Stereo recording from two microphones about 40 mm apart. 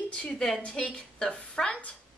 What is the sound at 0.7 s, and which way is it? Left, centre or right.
A woman's voice, left.